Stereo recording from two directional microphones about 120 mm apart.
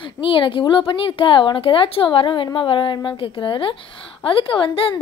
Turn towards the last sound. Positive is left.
turn(degrees=45)  # may be behind; listen again after turning